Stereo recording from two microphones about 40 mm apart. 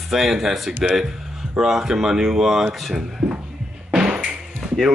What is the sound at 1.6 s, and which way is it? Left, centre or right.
Speech, centre.